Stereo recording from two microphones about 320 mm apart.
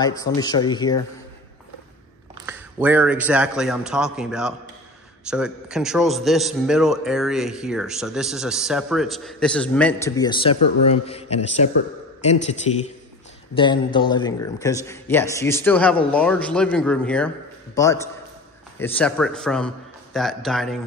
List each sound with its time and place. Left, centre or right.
0.4 s speech: centre
2.4 s a man's voice: centre